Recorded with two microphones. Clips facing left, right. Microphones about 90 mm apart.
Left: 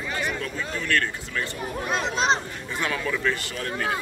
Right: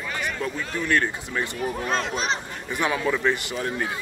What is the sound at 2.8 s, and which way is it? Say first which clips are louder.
Speech: right 3 dB; 20° right (ahead or behind).